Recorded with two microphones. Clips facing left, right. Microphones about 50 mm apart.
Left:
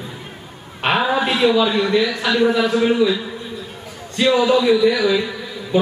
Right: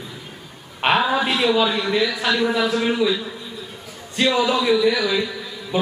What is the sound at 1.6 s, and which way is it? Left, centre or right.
Speech, centre.